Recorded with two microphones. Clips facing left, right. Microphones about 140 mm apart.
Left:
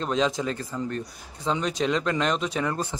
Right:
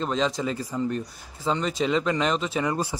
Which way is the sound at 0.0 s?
Centre (ahead or behind).